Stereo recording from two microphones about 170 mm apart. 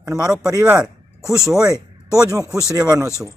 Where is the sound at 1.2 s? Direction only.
15° left (ahead or behind).